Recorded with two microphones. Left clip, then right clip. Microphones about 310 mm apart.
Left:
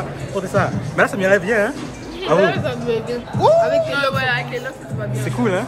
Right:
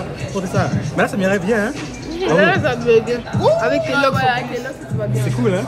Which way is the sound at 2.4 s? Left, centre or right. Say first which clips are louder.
Right 4 dB; right.